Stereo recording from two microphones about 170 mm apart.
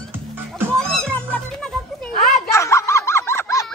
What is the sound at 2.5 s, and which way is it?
Snicker, 15° left (ahead or behind).